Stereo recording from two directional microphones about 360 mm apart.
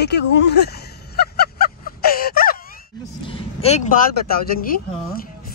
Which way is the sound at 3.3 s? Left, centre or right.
Centre.